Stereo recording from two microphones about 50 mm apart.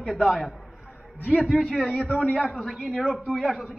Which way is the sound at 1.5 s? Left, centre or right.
Centre.